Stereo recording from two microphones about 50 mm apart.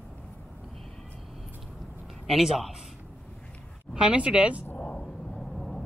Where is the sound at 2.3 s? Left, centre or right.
Centre.